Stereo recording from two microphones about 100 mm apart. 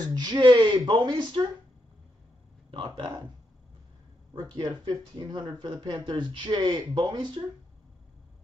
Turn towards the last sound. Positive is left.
turn(degrees=-50)  # may be behind; listen again after turning